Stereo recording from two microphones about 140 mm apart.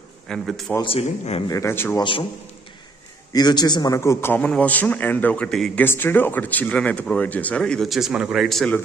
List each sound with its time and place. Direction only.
0.3 s a man's voice: 5° left (ahead or behind)
0.8 s speech: 45° left (ahead or behind)
1.5 s speech: 20° left (ahead or behind)
2.0 s a man's voice: 35° left (ahead or behind)
3.3 s speech: 30° left (ahead or behind); by 8.7 s centre (ahead or behind)